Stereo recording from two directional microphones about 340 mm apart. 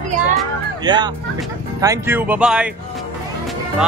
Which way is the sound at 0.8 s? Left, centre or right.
Centre.